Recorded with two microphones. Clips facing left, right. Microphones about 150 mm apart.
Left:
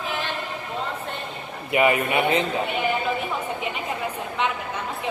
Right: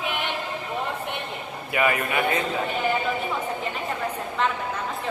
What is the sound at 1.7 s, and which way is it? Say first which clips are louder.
Speech: left 4 dB; 20° left (ahead or behind).